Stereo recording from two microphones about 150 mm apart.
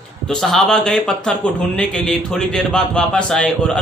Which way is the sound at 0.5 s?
5° left (ahead or behind).